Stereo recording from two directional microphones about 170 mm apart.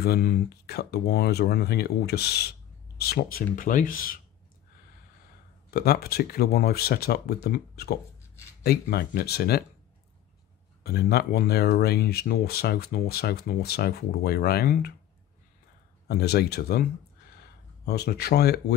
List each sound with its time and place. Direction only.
0.0 s speech: 60° left (ahead or behind)
5.7 s speech: 65° left (ahead or behind)
10.8 s speech: 65° left (ahead or behind)
16.1 s speech: 70° left (ahead or behind)
17.8 s speech: 70° left (ahead or behind)